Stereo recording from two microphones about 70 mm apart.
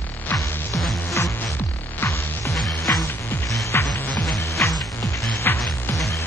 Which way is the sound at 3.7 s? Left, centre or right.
Left.